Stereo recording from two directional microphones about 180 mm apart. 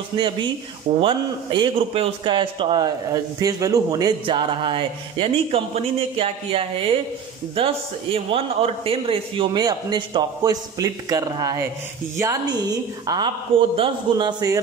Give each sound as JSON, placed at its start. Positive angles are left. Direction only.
{"t": 0.1, "sound": "a man's voice", "side_deg": -20}